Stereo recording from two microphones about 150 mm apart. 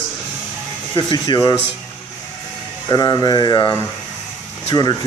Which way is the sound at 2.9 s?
25° left (ahead or behind).